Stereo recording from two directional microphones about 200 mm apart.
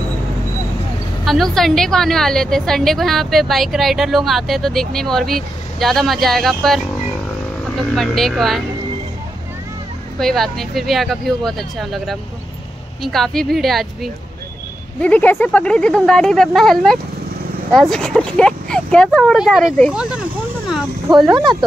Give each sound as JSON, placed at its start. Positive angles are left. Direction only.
{"t": 1.2, "sound": "a woman's voice", "side_deg": 0}
{"t": 10.1, "sound": "a woman's voice", "side_deg": 0}
{"t": 21.4, "sound": "speech", "side_deg": -20}